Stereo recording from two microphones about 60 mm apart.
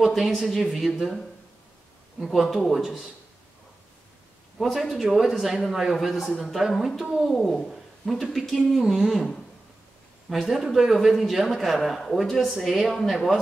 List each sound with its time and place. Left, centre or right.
0.0 s a man's voice: centre
4.6 s a man's voice: centre
7.2 s speech: centre
8.7 s a man's voice: centre
10.3 s a man's voice: centre